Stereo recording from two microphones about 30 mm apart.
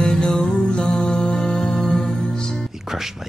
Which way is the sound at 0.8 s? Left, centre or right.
Centre.